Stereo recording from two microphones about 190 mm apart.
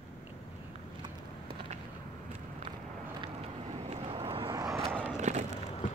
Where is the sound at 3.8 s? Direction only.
30° right (ahead or behind).